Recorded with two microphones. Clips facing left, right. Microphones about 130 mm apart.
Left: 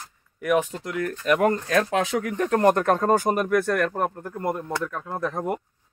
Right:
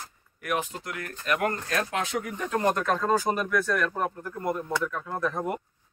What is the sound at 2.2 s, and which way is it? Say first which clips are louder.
Speech: left 6 dB; 90° left.